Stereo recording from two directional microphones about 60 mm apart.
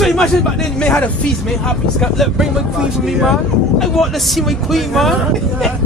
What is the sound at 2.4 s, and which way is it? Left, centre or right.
Speech, centre.